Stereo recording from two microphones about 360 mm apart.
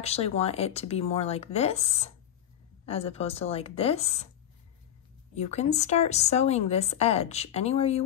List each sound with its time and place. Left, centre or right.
0.0 s a woman's voice: centre
5.3 s a woman's voice: centre